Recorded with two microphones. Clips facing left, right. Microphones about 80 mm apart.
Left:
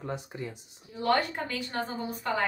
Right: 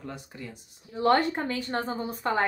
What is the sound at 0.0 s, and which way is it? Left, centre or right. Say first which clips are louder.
Speech: left 4 dB; left.